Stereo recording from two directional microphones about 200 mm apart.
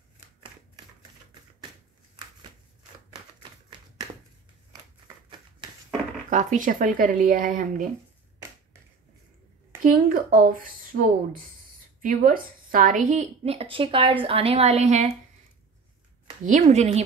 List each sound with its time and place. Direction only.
6.3 s a woman's voice: 40° right (ahead or behind)
9.9 s a woman's voice: 45° right (ahead or behind)
16.4 s a woman's voice: 40° right (ahead or behind)